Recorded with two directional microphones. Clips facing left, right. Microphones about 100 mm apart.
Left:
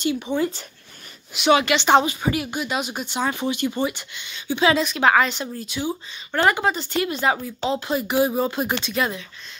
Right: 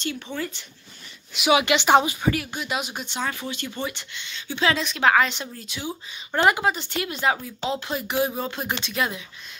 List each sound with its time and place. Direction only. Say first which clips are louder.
0.0 s speech: left 8 dB; 10° left (ahead or behind)
1.3 s speech: left 3 dB; 5° right (ahead or behind)
1.6 s a woman's voice: left 1 dB; 15° right (ahead or behind)
2.5 s speech: left 3 dB; centre (ahead or behind)
3.3 s speech: left 7 dB; 15° left (ahead or behind); by 5.9 s centre (ahead or behind)
6.3 s a woman's voice: even; 15° right (ahead or behind)
6.6 s speech: left 3 dB; centre (ahead or behind)